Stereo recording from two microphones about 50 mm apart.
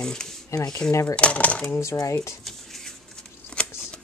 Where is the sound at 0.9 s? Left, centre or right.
Left.